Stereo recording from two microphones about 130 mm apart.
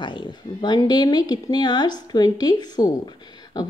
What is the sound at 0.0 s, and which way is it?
Speech, 35° left (ahead or behind).